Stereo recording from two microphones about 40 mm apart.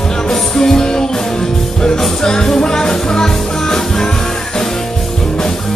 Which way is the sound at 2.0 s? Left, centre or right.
Centre.